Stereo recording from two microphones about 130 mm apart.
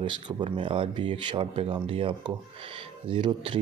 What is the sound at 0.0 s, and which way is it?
Speech, 40° right (ahead or behind).